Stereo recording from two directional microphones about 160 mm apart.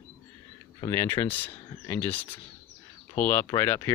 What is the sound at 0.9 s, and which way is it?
Speech, 15° left (ahead or behind).